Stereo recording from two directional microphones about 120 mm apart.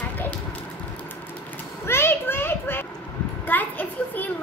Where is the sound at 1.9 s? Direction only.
20° left (ahead or behind).